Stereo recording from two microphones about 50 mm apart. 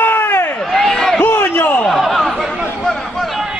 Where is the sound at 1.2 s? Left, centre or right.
Left.